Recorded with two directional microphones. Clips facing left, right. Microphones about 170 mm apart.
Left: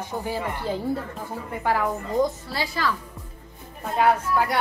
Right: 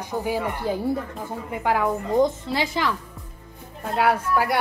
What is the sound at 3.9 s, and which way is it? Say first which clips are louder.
Speech: even; 10° right (ahead or behind).